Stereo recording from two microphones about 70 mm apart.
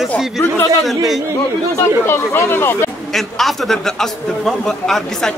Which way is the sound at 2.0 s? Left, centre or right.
Left.